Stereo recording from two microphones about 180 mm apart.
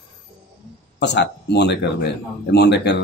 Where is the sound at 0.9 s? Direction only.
70° left (ahead or behind).